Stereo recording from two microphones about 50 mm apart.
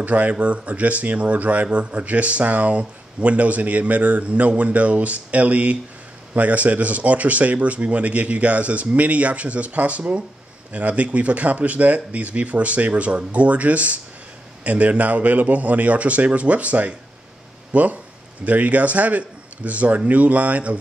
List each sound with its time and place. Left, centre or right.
0.0 s speech: right